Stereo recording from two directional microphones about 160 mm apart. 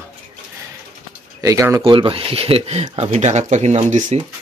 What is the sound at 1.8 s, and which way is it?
Speech, 35° right (ahead or behind).